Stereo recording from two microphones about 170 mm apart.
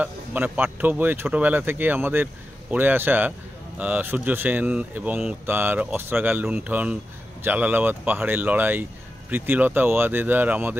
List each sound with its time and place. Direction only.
0.0 s a man's voice: 10° right (ahead or behind)